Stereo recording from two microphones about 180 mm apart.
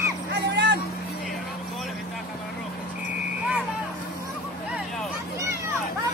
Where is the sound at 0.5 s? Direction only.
75° right (ahead or behind).